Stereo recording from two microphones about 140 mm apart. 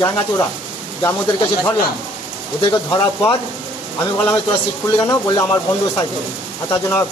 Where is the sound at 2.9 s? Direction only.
30° left (ahead or behind).